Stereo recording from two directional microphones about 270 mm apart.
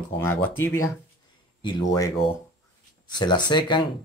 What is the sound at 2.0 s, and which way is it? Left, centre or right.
Speech, centre.